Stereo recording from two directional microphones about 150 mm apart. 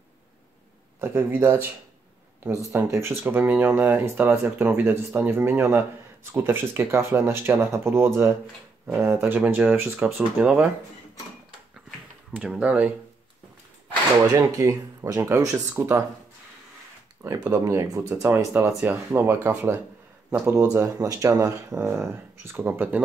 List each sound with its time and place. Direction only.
1.0 s speech: 15° right (ahead or behind)
2.7 s speech: 15° right (ahead or behind)
10.0 s speech: centre (ahead or behind)
12.4 s speech: 10° right (ahead or behind)
14.3 s speech: 20° right (ahead or behind)
17.5 s speech: 20° right (ahead or behind)
20.5 s speech: 20° right (ahead or behind)